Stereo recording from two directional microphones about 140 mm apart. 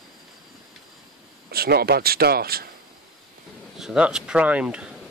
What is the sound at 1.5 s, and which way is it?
Speech, 90° right.